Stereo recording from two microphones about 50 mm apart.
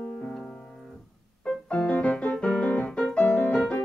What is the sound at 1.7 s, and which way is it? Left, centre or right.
Keyboard, left.